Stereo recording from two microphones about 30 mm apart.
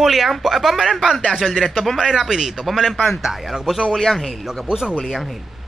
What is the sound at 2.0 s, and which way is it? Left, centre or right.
Speech, centre.